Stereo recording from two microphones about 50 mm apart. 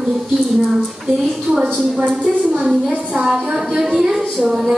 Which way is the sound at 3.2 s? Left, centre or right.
Centre.